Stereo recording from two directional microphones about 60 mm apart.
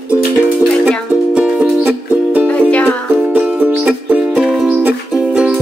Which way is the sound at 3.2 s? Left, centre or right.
Right.